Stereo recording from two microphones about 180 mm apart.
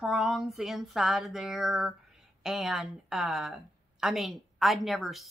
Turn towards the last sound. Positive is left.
turn(degrees=0)  # may be behind; listen again after turning